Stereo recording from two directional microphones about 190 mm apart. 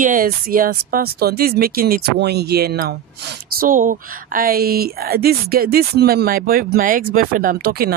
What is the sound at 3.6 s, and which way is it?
Speech, 45° right (ahead or behind).